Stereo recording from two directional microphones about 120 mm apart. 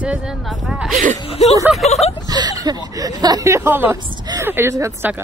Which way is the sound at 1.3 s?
60° left (ahead or behind).